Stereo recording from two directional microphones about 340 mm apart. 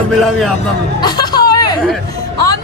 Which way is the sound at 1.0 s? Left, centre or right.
Centre.